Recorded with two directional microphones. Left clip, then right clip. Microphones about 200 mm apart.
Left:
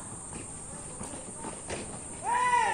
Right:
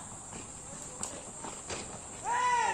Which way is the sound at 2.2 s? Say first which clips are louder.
Left 3 dB; 25° left (ahead or behind).